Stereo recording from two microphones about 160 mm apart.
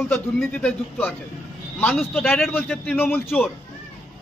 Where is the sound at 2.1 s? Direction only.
5° left (ahead or behind).